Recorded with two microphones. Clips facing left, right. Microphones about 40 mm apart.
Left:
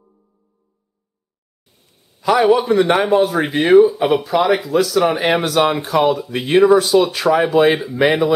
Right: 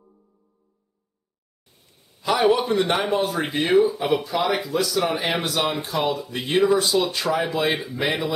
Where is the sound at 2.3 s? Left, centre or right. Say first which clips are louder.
Left 6 dB; centre.